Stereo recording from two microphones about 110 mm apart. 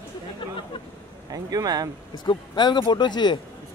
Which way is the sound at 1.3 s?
35° right (ahead or behind).